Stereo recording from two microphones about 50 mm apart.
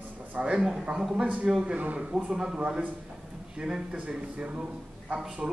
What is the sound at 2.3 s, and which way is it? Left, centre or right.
A man's voice, centre.